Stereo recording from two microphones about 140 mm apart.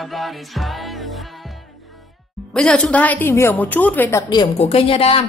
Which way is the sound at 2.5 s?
5° left (ahead or behind).